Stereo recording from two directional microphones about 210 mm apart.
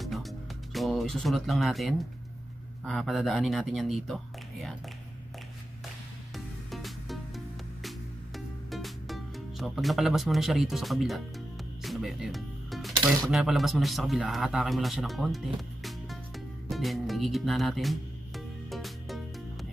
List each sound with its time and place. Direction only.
0.0 s music: centre (ahead or behind)
0.7 s a man's voice: centre (ahead or behind)
6.3 s music: centre (ahead or behind)
8.6 s speech: centre (ahead or behind)
11.8 s music: centre (ahead or behind)
13.3 s a man's voice: centre (ahead or behind)
16.6 s music: centre (ahead or behind)